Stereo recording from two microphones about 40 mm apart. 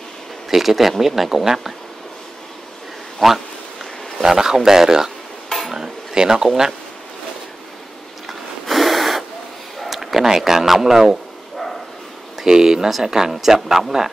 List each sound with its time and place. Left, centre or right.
0.5 s speech: centre
3.2 s speech: centre
4.2 s speech: centre
5.7 s a sound: centre
8.3 s snort: centre
9.8 s speech: centre
12.4 s speech: centre